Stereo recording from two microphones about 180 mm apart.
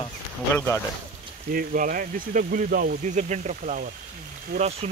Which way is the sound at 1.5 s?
50° right (ahead or behind).